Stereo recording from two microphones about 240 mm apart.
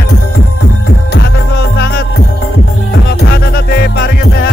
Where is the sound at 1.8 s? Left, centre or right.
Left.